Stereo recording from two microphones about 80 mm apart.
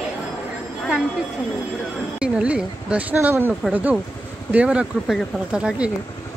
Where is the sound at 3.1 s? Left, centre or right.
Right; by 5.9 s centre.